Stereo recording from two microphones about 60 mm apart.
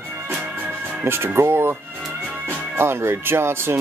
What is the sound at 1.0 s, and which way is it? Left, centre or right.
Speech, right.